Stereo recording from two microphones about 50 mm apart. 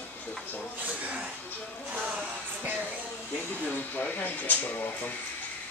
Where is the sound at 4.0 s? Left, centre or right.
Left.